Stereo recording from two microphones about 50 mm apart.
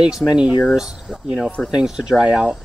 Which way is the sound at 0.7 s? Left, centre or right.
Centre.